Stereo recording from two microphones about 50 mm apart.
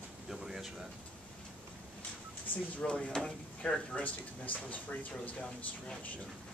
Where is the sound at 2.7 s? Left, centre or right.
Left.